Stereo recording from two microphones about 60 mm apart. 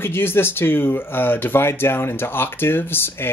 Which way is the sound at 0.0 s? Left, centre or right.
Left.